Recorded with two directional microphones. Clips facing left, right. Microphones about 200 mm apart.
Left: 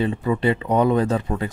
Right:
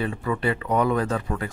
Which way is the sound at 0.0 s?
20° left (ahead or behind).